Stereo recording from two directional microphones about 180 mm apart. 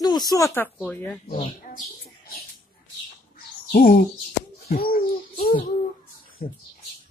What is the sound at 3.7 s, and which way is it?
Speech, 55° left (ahead or behind).